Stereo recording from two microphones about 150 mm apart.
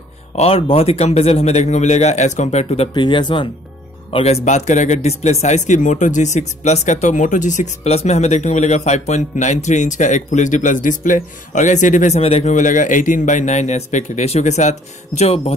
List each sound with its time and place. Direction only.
0.4 s speech: 40° left (ahead or behind)
2.9 s speech: 30° left (ahead or behind)
4.1 s speech: 45° left (ahead or behind)
12.2 s speech: 45° left (ahead or behind)